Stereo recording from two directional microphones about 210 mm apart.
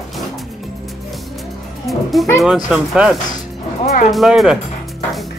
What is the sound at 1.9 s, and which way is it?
Speech, centre (ahead or behind).